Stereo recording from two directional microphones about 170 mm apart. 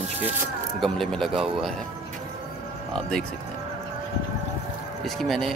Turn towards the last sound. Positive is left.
turn(degrees=0)  # may be behind; listen again after turning